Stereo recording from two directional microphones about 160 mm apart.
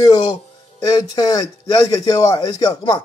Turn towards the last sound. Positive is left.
turn(degrees=25)  # may be behind; listen again after turning